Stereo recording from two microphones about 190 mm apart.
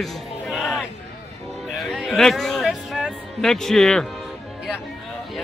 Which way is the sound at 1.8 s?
Centre (ahead or behind).